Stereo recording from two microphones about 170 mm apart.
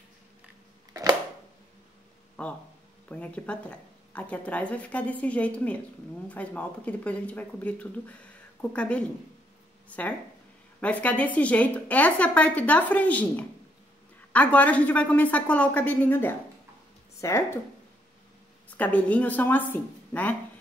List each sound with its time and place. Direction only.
3.1 s speech: 10° left (ahead or behind)
18.8 s speech: 10° left (ahead or behind)